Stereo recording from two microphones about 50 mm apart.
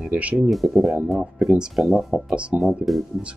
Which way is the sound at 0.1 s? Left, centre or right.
Right.